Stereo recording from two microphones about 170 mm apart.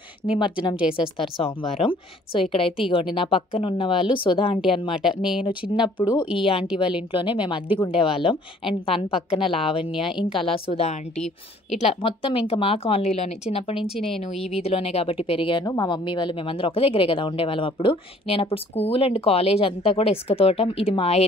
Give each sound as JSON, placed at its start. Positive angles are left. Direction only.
{"t": 0.4, "sound": "speech", "side_deg": 30}
{"t": 5.0, "sound": "speech", "side_deg": -5}
{"t": 5.4, "sound": "speech", "side_deg": 30}
{"t": 13.7, "sound": "speech", "side_deg": 0}
{"t": 14.3, "sound": "speech", "side_deg": 35}